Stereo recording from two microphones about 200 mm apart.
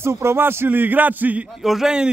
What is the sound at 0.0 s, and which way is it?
A man's voice, 10° right (ahead or behind).